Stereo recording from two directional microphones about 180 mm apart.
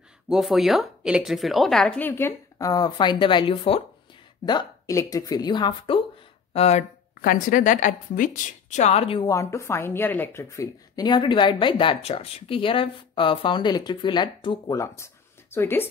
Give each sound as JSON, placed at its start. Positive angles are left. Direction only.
{"t": 0.3, "sound": "speech", "side_deg": 0}
{"t": 6.5, "sound": "speech", "side_deg": 35}
{"t": 7.2, "sound": "a woman's voice", "side_deg": 50}
{"t": 9.3, "sound": "speech", "side_deg": 15}